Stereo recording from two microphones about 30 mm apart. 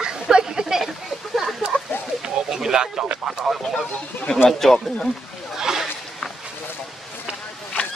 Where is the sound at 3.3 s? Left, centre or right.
Centre.